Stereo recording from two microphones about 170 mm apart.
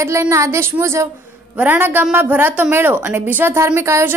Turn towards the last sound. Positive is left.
turn(degrees=-15)  # may be behind; listen again after turning